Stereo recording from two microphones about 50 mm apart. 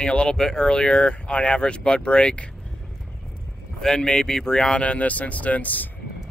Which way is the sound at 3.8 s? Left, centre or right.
Centre.